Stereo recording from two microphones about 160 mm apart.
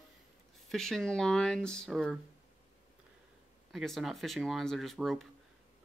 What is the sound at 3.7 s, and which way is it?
Speech, centre (ahead or behind).